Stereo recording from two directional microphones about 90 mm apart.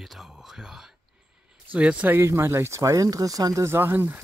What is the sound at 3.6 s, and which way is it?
Speech, 25° right (ahead or behind).